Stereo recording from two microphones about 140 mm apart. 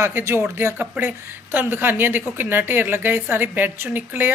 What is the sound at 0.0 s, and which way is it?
A woman's voice, 20° right (ahead or behind).